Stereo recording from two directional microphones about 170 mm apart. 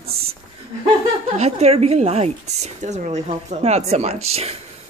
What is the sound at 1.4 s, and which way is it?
Speech, 40° right (ahead or behind).